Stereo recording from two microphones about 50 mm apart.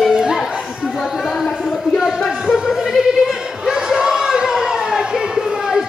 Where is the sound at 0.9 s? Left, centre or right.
Centre.